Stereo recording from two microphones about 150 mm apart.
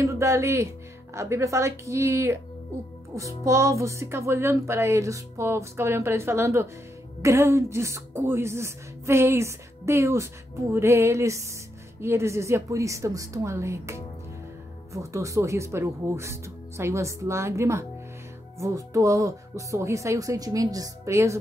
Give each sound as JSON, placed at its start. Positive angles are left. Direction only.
{"t": 0.0, "sound": "a woman's voice", "side_deg": -20}